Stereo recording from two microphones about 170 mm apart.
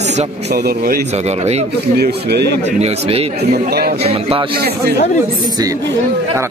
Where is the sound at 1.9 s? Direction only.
70° right (ahead or behind).